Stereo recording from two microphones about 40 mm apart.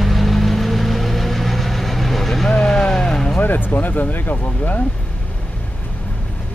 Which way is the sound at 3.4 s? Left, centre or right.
Left.